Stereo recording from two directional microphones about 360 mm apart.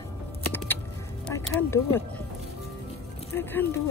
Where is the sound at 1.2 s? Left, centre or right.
Centre.